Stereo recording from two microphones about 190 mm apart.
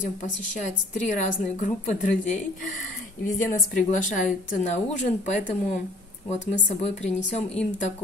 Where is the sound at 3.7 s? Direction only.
45° left (ahead or behind).